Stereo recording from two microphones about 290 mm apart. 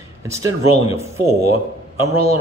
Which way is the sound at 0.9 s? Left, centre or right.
Left.